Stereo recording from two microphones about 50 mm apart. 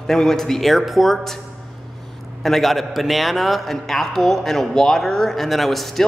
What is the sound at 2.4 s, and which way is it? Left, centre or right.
A man's voice, centre.